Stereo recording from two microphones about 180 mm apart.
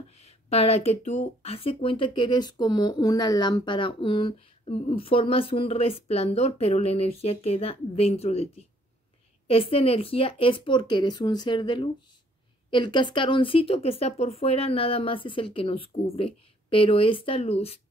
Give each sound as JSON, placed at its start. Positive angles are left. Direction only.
{"t": 0.2, "sound": "speech", "side_deg": 35}